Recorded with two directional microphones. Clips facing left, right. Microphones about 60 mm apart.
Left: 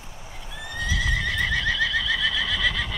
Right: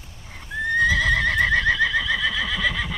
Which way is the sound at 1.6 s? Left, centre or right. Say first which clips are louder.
Right 4 dB; centre.